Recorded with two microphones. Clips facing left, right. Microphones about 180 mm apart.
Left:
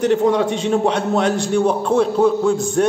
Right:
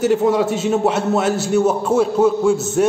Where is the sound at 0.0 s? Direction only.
5° right (ahead or behind).